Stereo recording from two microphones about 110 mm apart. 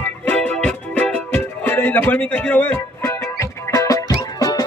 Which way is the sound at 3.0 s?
30° left (ahead or behind).